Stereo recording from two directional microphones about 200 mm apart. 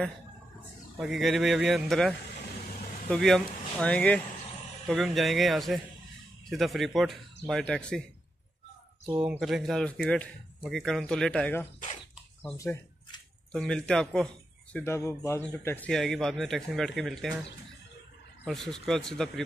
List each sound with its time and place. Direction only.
0.9 s a man's voice: centre (ahead or behind)
9.2 s a man's voice: 5° right (ahead or behind)
12.5 s bird: 15° left (ahead or behind)
13.5 s a man's voice: 5° left (ahead or behind)
18.4 s a man's voice: centre (ahead or behind)